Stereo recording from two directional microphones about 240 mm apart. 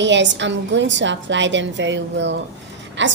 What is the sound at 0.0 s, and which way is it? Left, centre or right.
A woman's voice, right.